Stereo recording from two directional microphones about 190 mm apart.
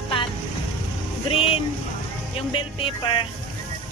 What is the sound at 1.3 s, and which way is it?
Speech, 30° left (ahead or behind).